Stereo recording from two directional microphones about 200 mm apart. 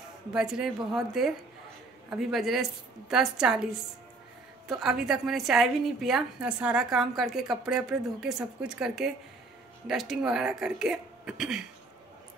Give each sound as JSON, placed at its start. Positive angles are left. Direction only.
{"t": 0.3, "sound": "a woman's voice", "side_deg": -5}
{"t": 4.6, "sound": "a woman's voice", "side_deg": 0}